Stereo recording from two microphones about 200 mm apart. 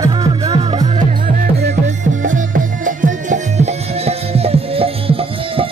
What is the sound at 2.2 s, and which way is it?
Music, 40° right (ahead or behind).